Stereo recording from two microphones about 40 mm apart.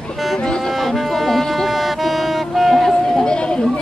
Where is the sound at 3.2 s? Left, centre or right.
Left.